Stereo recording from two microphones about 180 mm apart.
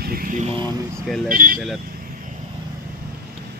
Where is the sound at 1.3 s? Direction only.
50° right (ahead or behind).